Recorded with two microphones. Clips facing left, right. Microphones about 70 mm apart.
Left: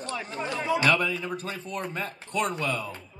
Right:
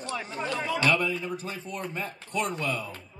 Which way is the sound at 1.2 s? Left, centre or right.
Left.